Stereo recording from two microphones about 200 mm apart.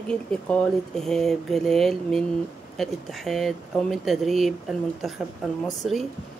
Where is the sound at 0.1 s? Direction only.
5° left (ahead or behind).